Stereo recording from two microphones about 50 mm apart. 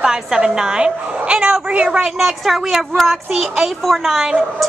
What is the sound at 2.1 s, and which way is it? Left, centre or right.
A woman's voice, centre.